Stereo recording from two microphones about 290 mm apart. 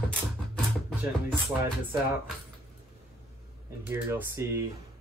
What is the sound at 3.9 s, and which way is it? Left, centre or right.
Speech, centre.